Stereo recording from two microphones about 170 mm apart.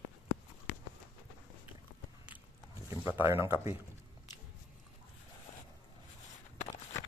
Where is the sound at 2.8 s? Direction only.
10° right (ahead or behind).